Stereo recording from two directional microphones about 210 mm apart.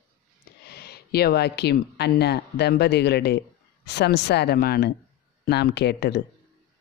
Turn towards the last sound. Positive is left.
turn(degrees=50)  # may be behind; listen again after turning